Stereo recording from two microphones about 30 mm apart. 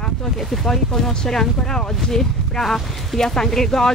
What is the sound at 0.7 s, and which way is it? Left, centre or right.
Speech, centre.